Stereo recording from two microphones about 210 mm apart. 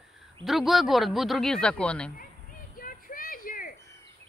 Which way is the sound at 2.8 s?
40° left (ahead or behind).